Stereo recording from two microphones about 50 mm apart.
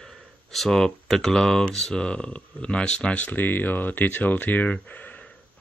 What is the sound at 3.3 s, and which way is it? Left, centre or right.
Speech, left.